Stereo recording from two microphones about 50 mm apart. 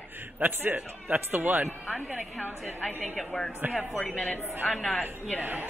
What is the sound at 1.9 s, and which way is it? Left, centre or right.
Speech, right.